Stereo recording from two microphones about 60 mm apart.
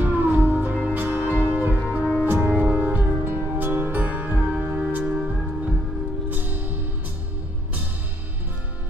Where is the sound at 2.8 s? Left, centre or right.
Right.